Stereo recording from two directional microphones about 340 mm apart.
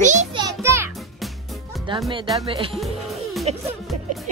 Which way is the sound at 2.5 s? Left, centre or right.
Centre.